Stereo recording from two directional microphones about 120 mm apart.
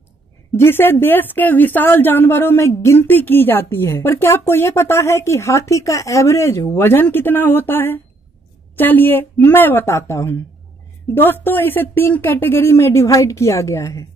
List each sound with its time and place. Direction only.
0.6 s a woman's voice: 20° left (ahead or behind)